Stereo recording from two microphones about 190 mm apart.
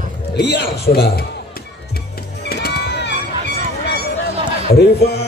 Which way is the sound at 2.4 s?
60° left (ahead or behind).